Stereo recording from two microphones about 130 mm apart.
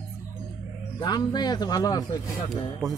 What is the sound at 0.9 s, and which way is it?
Speech, 35° left (ahead or behind).